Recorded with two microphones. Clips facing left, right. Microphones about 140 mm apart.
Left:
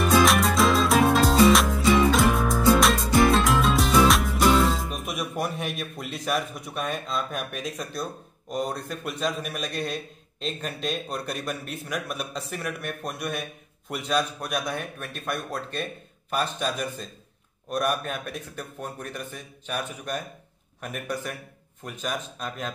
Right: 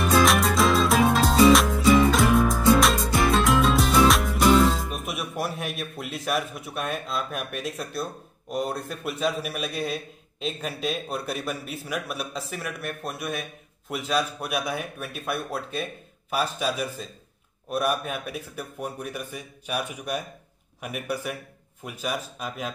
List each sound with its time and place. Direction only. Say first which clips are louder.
0.0 s music: even; centre (ahead or behind)
17.6 s a man's voice: right 1 dB; 5° right (ahead or behind)